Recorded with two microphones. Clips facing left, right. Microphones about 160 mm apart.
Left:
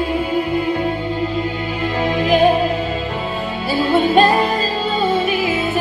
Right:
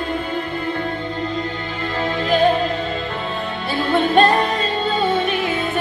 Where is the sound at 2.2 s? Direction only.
10° left (ahead or behind).